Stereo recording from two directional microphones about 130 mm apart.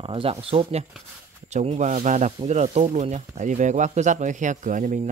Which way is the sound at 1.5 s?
60° right (ahead or behind).